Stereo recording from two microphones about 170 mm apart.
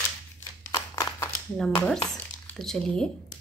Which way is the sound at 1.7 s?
5° left (ahead or behind).